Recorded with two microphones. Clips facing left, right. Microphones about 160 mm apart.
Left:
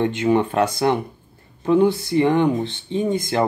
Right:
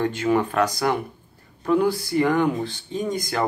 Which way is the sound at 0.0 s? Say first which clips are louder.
Left 3 dB; 20° left (ahead or behind).